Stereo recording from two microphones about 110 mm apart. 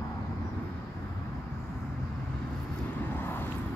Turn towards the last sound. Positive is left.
turn(degrees=20)  # may be behind; listen again after turning